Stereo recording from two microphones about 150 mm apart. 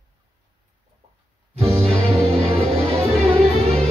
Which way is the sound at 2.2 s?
40° right (ahead or behind).